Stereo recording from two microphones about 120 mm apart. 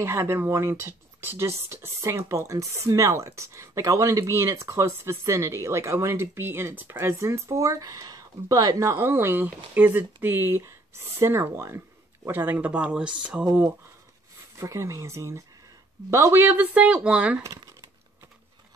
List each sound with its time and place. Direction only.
0.0 s speech: 20° right (ahead or behind)
14.6 s speech: 25° right (ahead or behind); by 17.4 s 10° right (ahead or behind)